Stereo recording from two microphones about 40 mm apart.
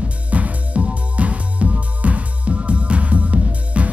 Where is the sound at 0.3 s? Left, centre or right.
Right.